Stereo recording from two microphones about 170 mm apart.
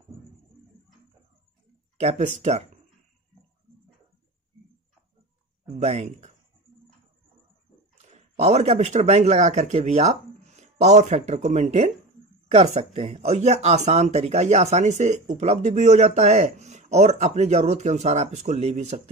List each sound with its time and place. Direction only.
2.0 s speech: 40° right (ahead or behind)
5.8 s speech: 40° right (ahead or behind)
8.1 s speech: 40° right (ahead or behind)